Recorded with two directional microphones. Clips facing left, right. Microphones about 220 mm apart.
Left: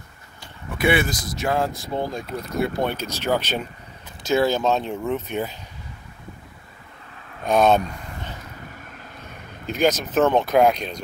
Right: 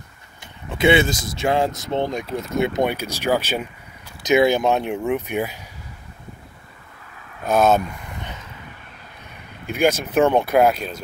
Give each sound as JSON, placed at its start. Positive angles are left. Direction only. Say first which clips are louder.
{"t": 0.4, "sound": "speech", "louder": "right 4 dB", "side_deg": -25}
{"t": 7.4, "sound": "speech", "louder": "even", "side_deg": -5}
{"t": 9.8, "sound": "speech", "louder": "right 2 dB", "side_deg": -10}